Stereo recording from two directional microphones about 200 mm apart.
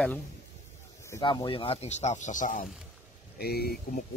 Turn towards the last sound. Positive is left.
turn(degrees=50)  # may be behind; listen again after turning